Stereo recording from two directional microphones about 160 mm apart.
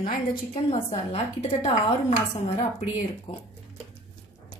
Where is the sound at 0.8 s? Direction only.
40° left (ahead or behind).